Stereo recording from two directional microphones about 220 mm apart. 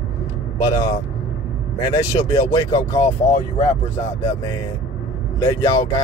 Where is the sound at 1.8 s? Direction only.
15° left (ahead or behind).